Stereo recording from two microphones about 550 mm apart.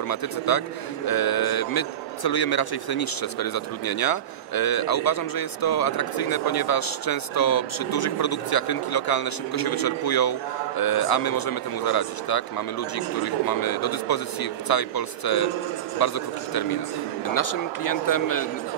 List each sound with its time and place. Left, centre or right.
0.1 s a man's voice: left
17.8 s a man's voice: left